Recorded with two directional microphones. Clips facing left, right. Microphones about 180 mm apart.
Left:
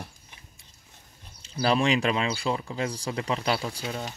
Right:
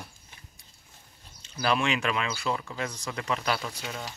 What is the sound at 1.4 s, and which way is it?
Speech, 30° left (ahead or behind).